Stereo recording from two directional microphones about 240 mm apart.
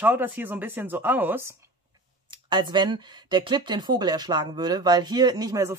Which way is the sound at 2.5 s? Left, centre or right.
Centre.